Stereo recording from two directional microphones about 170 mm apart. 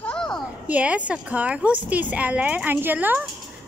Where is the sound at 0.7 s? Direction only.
10° right (ahead or behind).